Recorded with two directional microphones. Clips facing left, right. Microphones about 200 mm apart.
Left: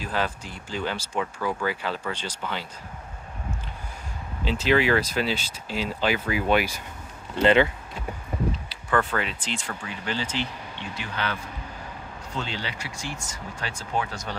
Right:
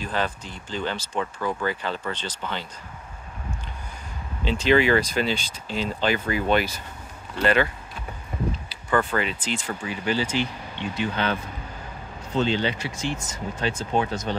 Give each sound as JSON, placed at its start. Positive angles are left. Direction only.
{"t": 0.0, "sound": "speech", "side_deg": 5}
{"t": 4.5, "sound": "speech", "side_deg": 5}
{"t": 7.4, "sound": "speech", "side_deg": 20}
{"t": 8.6, "sound": "speech", "side_deg": 0}
{"t": 11.0, "sound": "speech", "side_deg": -25}
{"t": 12.4, "sound": "speech", "side_deg": -25}